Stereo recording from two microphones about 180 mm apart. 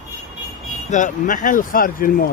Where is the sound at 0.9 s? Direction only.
45° left (ahead or behind).